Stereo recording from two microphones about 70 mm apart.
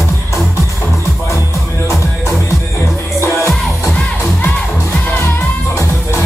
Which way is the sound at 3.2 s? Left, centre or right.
Left.